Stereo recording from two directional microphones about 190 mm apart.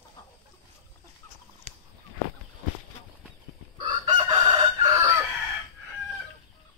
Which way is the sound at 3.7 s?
25° right (ahead or behind).